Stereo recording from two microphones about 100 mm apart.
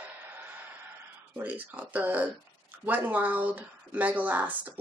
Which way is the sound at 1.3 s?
15° right (ahead or behind).